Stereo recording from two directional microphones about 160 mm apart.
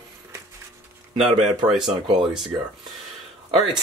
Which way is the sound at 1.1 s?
40° right (ahead or behind).